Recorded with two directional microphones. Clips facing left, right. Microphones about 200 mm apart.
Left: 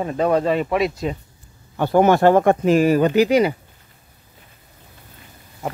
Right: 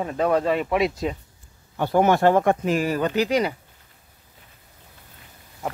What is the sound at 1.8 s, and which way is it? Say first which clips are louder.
Speech: left 4 dB; 70° left (ahead or behind).